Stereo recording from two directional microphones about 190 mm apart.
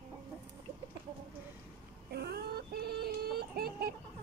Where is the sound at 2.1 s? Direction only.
55° right (ahead or behind).